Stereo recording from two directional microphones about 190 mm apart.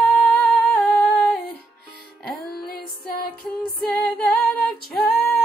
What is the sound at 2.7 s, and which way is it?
Music, 50° left (ahead or behind).